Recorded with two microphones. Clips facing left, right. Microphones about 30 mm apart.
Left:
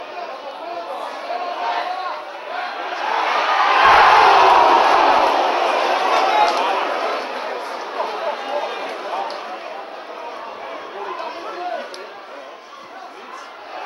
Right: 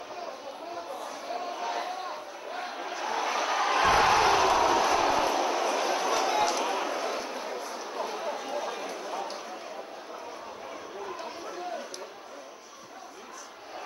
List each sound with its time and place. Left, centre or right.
0.2 s chatter: left
11.0 s chatter: left